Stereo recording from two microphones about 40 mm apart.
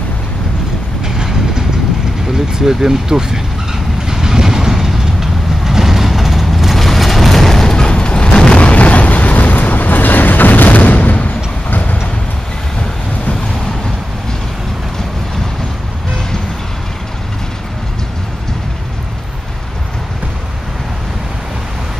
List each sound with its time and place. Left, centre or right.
1.0 s vehicle: centre
2.3 s speech: centre
4.1 s vehicle: centre
7.7 s boom: left